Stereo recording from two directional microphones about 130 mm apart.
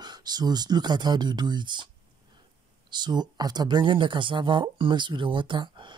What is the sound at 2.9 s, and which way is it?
Speech, 35° right (ahead or behind).